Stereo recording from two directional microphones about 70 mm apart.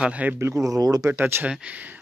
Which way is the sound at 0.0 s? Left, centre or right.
Centre.